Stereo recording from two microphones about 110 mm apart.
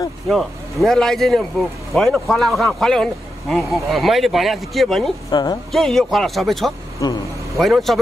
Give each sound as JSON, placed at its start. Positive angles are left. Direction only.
{"t": 0.3, "sound": "speech", "side_deg": 0}
{"t": 5.3, "sound": "a woman's voice", "side_deg": 40}
{"t": 5.7, "sound": "speech", "side_deg": 0}